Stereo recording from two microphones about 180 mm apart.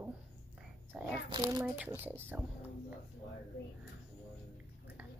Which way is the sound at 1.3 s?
25° right (ahead or behind).